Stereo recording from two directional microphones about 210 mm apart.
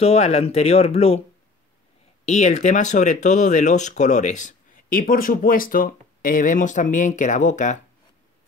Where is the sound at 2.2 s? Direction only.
35° left (ahead or behind).